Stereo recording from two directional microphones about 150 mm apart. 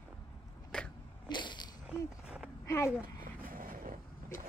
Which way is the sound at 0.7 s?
5° left (ahead or behind).